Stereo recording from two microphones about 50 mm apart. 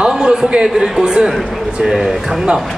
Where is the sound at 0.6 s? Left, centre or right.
Centre.